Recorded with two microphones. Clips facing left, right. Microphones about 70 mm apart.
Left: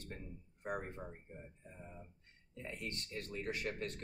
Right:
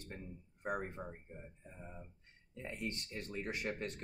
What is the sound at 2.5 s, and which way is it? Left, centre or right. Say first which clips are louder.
A man's voice: right 2 dB; right.